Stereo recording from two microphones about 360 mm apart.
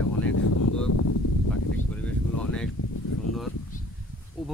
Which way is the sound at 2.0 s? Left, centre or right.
Centre.